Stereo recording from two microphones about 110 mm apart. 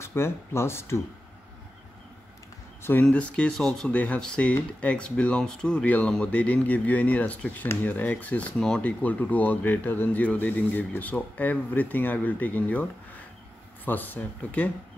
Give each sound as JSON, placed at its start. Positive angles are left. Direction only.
{"t": 0.0, "sound": "speech", "side_deg": 25}
{"t": 2.8, "sound": "speech", "side_deg": 25}
{"t": 3.1, "sound": "speech", "side_deg": 10}